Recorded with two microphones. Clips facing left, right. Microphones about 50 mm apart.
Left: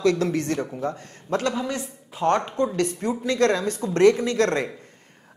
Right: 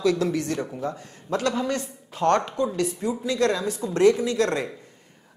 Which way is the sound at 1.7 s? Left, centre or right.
Left.